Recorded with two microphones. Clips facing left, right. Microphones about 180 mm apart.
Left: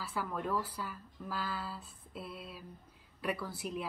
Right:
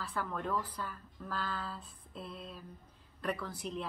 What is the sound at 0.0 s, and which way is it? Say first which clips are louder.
A woman's voice: even; 5° left (ahead or behind).